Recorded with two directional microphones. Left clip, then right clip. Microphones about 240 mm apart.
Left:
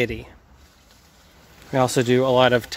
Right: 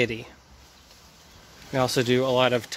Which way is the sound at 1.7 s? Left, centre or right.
Left.